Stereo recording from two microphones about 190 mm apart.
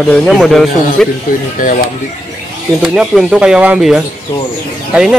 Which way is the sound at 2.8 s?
5° right (ahead or behind).